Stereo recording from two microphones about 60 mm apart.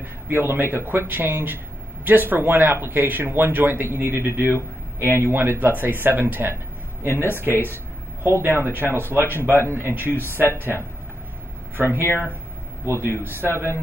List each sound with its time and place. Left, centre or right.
0.3 s a man's voice: right